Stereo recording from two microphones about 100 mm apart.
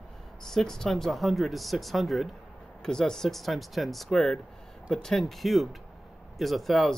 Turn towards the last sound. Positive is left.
turn(degrees=0)  # may be behind; listen again after turning